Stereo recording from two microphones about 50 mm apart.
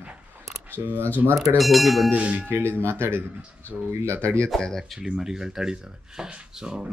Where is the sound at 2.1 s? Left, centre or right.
Right.